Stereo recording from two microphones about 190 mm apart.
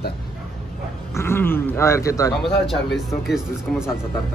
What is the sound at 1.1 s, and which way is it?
Speech, 10° left (ahead or behind).